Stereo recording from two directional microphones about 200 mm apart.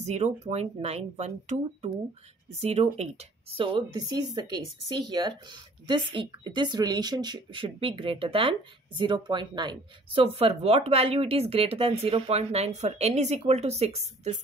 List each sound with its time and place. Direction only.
0.0 s a woman's voice: 35° right (ahead or behind)